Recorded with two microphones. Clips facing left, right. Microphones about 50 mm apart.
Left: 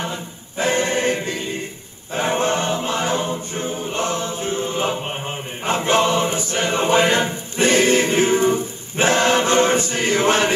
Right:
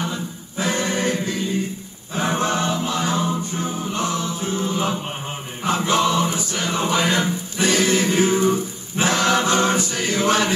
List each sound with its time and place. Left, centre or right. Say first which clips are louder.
0.0 s choir: right 1 dB; left
2.1 s music: left 2 dB; left
5.7 s choir: left 1 dB; left